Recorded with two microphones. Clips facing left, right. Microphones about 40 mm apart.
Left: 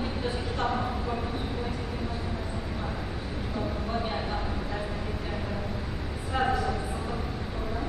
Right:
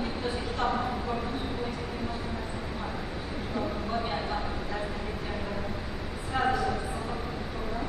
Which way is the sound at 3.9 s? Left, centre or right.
Centre.